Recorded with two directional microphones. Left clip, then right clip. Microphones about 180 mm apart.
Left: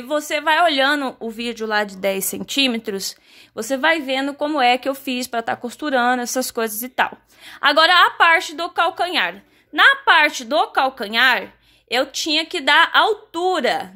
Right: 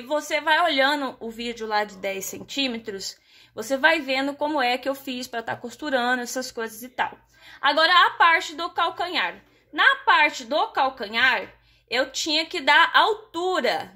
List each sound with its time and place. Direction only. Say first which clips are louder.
0.1 s speech: left 3 dB; 35° left (ahead or behind)